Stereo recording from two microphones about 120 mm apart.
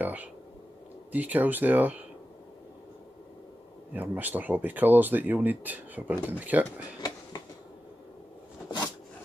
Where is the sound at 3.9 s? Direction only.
15° right (ahead or behind).